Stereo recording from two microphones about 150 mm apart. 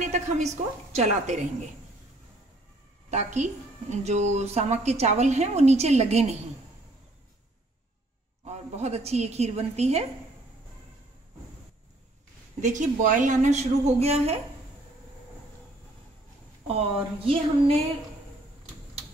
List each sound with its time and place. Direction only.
0.0 s a woman's voice: 50° right (ahead or behind)
3.1 s a woman's voice: 50° right (ahead or behind)
8.5 s a woman's voice: 45° right (ahead or behind)
12.6 s a woman's voice: 55° right (ahead or behind)
17.3 s a sound: 40° right (ahead or behind)